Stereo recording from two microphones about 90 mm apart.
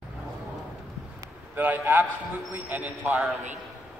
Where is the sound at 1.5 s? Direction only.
20° right (ahead or behind).